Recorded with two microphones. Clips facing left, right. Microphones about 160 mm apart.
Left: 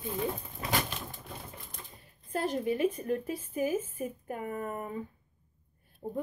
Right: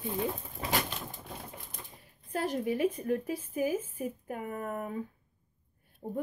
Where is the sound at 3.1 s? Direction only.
5° right (ahead or behind).